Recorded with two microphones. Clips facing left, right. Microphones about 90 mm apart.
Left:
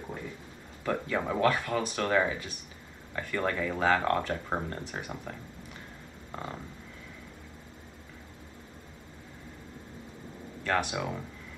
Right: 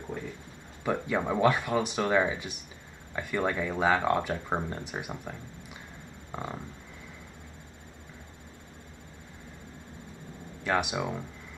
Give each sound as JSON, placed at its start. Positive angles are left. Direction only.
{"t": 0.8, "sound": "speech", "side_deg": -15}
{"t": 6.3, "sound": "speech", "side_deg": -10}
{"t": 10.6, "sound": "speech", "side_deg": -15}